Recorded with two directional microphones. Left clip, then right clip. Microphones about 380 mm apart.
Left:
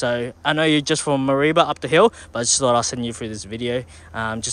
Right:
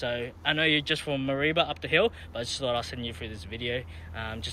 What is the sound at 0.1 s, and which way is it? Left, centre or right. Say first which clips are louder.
Speech: left 8 dB; left.